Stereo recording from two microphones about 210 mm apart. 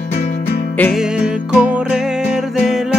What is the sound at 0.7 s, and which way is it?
Music, 5° left (ahead or behind).